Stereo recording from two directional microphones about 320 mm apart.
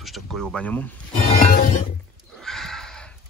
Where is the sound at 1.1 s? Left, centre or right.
Left.